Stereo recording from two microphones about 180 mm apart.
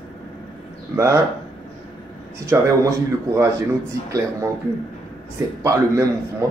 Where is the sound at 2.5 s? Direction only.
15° right (ahead or behind).